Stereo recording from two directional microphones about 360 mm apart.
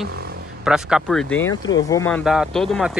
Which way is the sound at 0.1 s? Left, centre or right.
Right.